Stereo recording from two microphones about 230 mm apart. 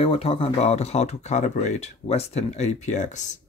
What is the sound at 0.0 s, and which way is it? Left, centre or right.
Speech, left.